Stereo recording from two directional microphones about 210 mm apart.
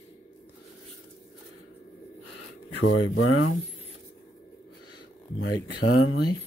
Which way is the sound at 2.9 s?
70° left (ahead or behind).